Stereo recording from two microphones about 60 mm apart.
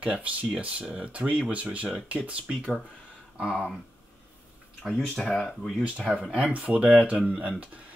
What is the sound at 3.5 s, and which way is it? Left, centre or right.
Speech, centre.